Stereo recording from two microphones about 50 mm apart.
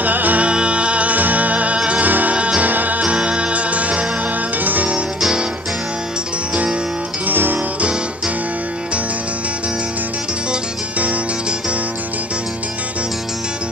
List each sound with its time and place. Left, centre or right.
0.0 s music: right
0.5 s music: right
2.7 s music: right
3.0 s music: right
7.2 s music: right